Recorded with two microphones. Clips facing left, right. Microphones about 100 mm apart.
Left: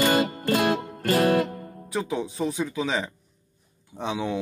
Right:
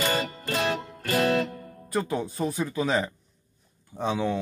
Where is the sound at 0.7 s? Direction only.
50° left (ahead or behind).